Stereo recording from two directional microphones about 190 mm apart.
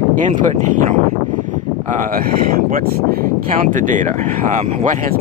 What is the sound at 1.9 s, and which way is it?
Speech, 45° right (ahead or behind).